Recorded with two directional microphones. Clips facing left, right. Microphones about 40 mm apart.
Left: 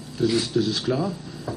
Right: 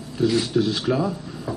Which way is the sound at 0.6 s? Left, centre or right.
Right.